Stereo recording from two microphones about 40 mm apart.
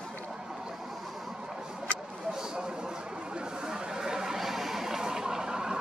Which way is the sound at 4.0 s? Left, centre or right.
Centre.